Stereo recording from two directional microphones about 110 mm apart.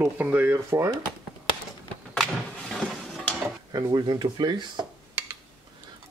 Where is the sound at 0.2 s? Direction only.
15° right (ahead or behind).